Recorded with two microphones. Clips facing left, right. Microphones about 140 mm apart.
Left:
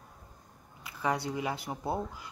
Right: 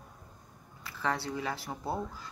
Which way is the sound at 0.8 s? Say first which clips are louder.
Left 2 dB; 15° left (ahead or behind).